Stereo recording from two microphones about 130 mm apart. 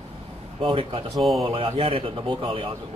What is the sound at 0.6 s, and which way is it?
Speech, 40° right (ahead or behind).